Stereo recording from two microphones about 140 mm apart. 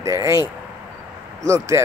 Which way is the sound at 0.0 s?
20° right (ahead or behind).